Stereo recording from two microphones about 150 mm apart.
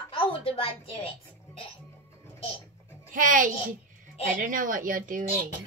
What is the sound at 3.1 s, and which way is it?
A child's voice, 65° right (ahead or behind).